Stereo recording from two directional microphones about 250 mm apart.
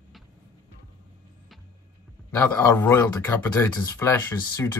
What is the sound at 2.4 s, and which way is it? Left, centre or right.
Speech, centre.